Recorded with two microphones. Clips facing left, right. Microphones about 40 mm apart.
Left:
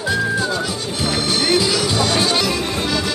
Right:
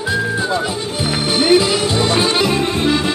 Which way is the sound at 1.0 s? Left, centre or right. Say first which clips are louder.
Right 3 dB; centre.